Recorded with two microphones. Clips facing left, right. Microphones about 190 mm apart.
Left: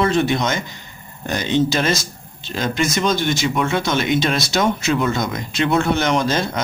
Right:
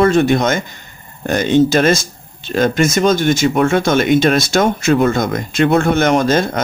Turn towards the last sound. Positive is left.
turn(degrees=-50)  # may be behind; listen again after turning